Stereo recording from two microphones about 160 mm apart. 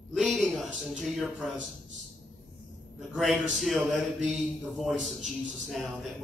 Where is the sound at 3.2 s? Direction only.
Centre (ahead or behind).